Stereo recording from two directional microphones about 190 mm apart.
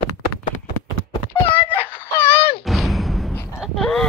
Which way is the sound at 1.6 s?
30° left (ahead or behind).